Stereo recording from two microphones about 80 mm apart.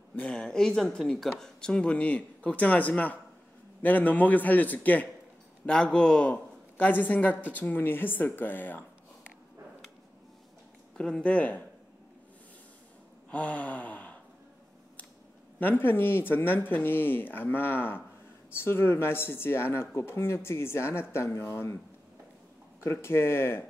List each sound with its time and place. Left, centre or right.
0.3 s speech: centre; by 8.8 s left
11.0 s speech: centre
13.3 s gasp: centre
15.6 s speech: left
22.8 s speech: left